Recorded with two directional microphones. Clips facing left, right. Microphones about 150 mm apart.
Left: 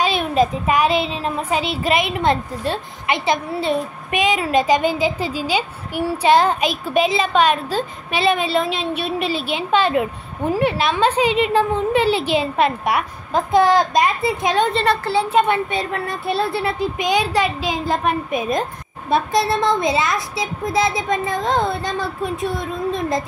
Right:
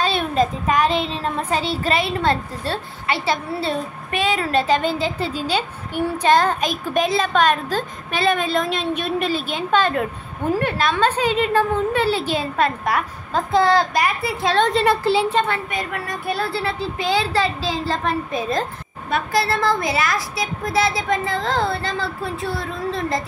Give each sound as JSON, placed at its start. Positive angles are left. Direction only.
{"t": 0.0, "sound": "a woman's voice", "side_deg": 10}
{"t": 14.7, "sound": "a child's voice", "side_deg": 0}
{"t": 15.3, "sound": "a woman's voice", "side_deg": 20}